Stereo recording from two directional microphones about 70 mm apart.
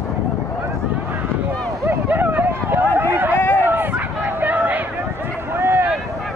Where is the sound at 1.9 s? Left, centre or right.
Right.